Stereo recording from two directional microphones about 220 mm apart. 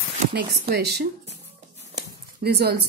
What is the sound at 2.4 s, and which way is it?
Speech, 45° right (ahead or behind).